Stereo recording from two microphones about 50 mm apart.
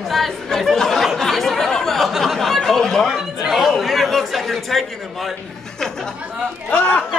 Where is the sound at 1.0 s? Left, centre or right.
Centre.